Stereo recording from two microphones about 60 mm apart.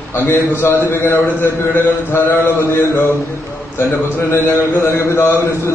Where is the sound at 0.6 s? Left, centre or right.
Left.